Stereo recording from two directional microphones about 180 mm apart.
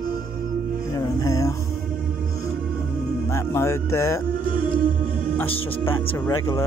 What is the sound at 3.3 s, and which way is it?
Music, 15° left (ahead or behind).